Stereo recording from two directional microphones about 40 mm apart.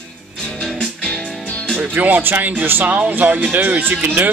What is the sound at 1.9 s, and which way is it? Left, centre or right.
Speech, right.